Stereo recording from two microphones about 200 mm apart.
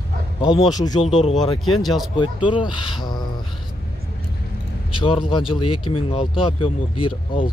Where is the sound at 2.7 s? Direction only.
25° left (ahead or behind).